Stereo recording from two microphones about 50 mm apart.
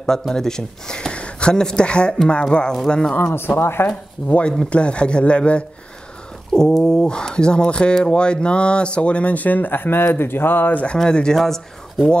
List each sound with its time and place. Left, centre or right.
0.3 s speech: centre
3.3 s speech: left
3.8 s speech: left
6.5 s speech: centre; by 10.7 s left
10.7 s speech: left
11.0 s speech: centre